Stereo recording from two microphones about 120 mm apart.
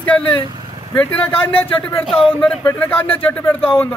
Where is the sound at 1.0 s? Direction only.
15° left (ahead or behind).